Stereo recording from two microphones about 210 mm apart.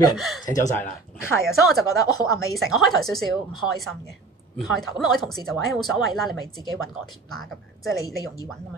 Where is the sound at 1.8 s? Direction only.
15° left (ahead or behind).